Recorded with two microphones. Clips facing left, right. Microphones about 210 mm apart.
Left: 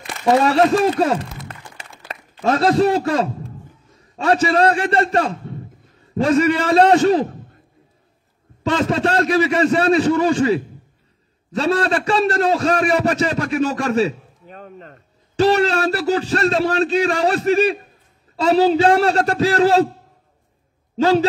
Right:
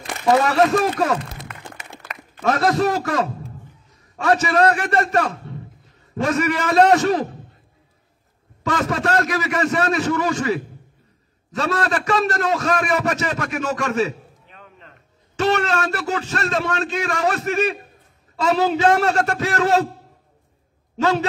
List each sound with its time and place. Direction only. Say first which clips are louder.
0.3 s a man's voice: left 2 dB; 30° left (ahead or behind)
8.6 s a man's voice: left 3 dB; 25° left (ahead or behind)
21.0 s a man's voice: left 5 dB; 35° left (ahead or behind)